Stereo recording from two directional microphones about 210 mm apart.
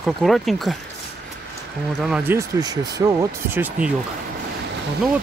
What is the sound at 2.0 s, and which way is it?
Speech, 5° right (ahead or behind).